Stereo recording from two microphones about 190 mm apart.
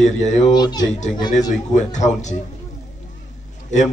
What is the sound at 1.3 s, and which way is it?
A man's voice, 40° left (ahead or behind).